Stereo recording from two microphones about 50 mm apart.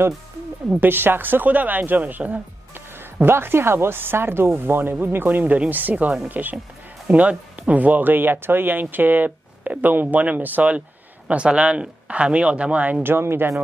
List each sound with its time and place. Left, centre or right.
0.7 s speech: right
3.2 s speech: right
13.0 s speech: right